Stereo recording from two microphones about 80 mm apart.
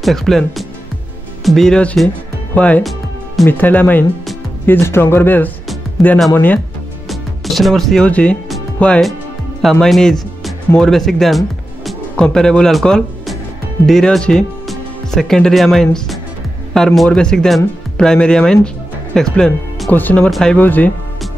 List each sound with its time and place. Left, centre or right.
0.0 s speech: centre; by 4.0 s left
4.6 s speech: left
7.1 s music: centre
8.1 s speech: centre
9.6 s speech: centre
19.9 s speech: left
20.2 s speech: centre
20.5 s speech: left